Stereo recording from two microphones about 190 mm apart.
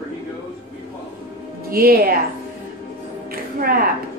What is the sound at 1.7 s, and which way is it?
Speech, 50° right (ahead or behind).